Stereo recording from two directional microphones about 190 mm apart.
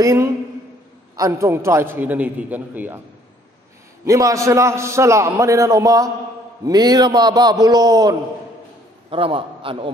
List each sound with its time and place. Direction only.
0.0 s a man's voice: 15° right (ahead or behind)
4.0 s a man's voice: 15° right (ahead or behind)